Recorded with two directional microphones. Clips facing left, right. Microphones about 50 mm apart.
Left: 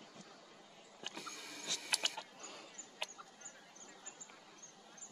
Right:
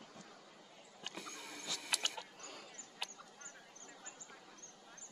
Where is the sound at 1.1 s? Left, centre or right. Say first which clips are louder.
Right 2 dB; right.